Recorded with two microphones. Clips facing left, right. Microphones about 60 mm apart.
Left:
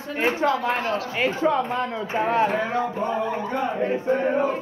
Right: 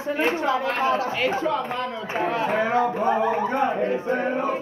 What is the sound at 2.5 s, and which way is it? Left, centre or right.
Speech, centre.